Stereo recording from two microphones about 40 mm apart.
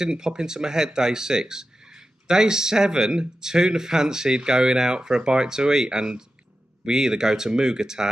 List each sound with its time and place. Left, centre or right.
0.0 s speech: centre